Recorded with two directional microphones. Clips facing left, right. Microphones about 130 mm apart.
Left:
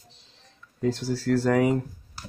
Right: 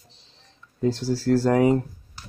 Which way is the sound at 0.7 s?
30° right (ahead or behind).